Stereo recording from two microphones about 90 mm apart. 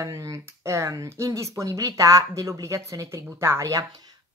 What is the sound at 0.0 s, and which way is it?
Speech, 35° right (ahead or behind).